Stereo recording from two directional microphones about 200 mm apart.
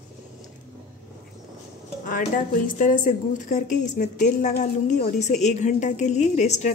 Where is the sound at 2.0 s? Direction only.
40° left (ahead or behind).